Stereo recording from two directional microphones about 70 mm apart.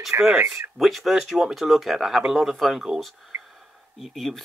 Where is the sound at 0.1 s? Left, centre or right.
Right.